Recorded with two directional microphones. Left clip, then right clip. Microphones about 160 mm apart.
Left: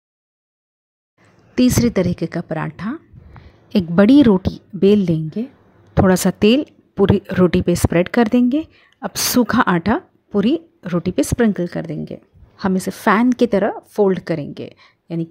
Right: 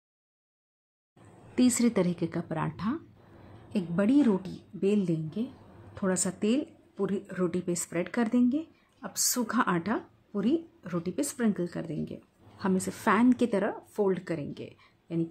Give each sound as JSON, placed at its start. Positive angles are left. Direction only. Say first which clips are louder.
{"t": 1.5, "sound": "a woman's voice", "louder": "left 10 dB", "side_deg": 35}
{"t": 3.6, "sound": "a woman's voice", "louder": "left 15 dB", "side_deg": 50}
{"t": 6.0, "sound": "a woman's voice", "louder": "left 14 dB", "side_deg": 55}